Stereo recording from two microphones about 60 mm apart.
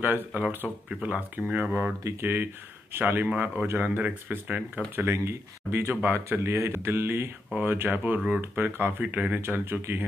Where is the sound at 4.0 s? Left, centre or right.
Right.